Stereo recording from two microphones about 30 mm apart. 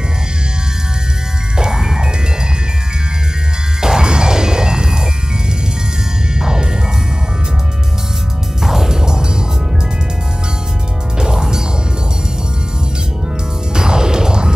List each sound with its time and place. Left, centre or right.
1.6 s music: centre
3.8 s music: right
6.4 s music: right
8.6 s music: centre
11.1 s music: right
13.7 s music: right